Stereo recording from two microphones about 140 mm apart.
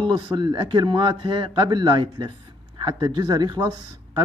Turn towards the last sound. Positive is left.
turn(degrees=-30)  # may be behind; listen again after turning